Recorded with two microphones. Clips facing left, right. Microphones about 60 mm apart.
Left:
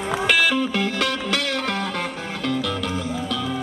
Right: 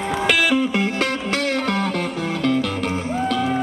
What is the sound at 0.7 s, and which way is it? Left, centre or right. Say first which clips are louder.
Music: right 2 dB; right.